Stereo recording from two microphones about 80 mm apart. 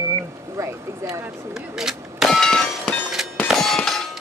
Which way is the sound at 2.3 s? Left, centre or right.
Centre.